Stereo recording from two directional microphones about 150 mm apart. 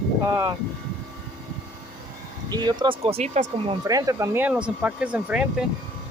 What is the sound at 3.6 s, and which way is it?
Speech, 25° right (ahead or behind).